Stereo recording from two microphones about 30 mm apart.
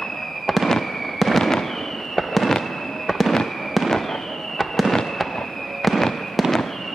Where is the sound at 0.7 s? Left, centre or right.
Centre.